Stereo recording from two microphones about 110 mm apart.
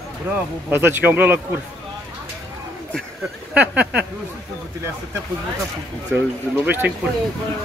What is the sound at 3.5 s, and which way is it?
Speech, 10° right (ahead or behind).